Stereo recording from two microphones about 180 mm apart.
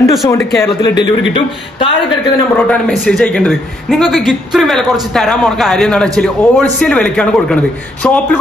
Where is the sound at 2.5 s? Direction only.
5° left (ahead or behind).